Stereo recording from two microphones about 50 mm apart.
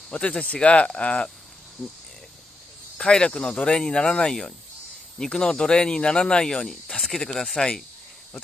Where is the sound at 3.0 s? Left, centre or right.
Centre.